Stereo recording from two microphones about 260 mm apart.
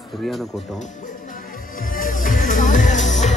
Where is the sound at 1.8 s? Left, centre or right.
Left.